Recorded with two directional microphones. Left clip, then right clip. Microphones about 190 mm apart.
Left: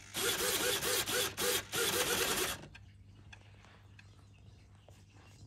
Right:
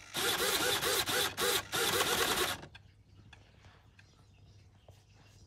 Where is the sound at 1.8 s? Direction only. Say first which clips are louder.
Right 2 dB; 30° right (ahead or behind).